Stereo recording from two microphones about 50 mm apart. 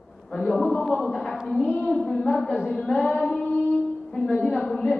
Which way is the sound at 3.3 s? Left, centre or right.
Left.